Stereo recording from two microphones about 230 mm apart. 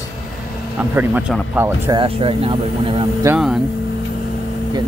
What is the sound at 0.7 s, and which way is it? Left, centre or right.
Speech, centre.